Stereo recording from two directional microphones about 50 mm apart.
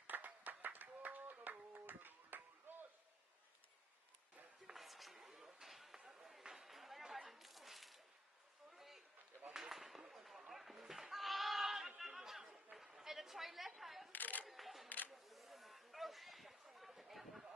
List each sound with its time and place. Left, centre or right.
0.0 s clapping: right
2.7 s slam: right
4.6 s a sound: centre
12.0 s chatter: centre
14.1 s camera: left
14.5 s a sound: centre